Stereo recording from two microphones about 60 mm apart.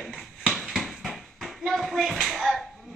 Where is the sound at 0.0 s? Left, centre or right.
Centre.